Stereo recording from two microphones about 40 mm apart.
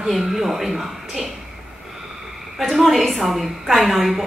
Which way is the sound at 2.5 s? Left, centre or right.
Centre.